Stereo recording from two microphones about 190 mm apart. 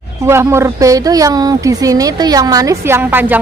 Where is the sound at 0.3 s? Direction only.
15° right (ahead or behind).